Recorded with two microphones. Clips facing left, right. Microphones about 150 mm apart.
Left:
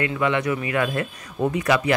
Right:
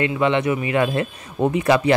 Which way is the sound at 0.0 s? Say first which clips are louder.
Right 3 dB; 25° right (ahead or behind).